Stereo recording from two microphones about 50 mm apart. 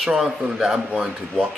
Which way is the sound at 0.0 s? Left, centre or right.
Centre.